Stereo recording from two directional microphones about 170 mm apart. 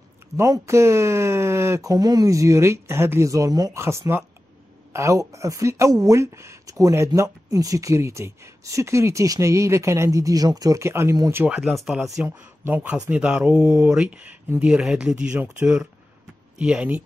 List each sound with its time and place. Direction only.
0.4 s speech: 15° right (ahead or behind); by 12.3 s centre (ahead or behind)
12.3 s speech: 10° right (ahead or behind)